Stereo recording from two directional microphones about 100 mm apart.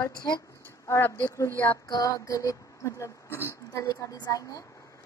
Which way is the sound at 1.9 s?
35° left (ahead or behind).